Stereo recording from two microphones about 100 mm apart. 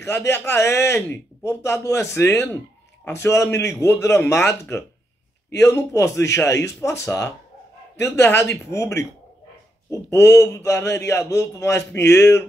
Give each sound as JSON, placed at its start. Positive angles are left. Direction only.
{"t": 0.0, "sound": "a man's voice", "side_deg": 25}